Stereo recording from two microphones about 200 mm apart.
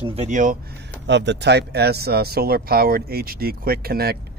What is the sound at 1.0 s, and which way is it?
Speech, 60° right (ahead or behind).